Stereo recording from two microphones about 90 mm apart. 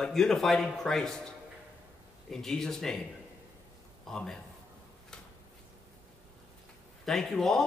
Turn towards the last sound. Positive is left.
turn(degrees=5)  # may be behind; listen again after turning